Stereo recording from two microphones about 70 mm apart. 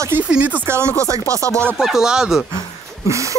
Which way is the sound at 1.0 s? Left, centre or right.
Right.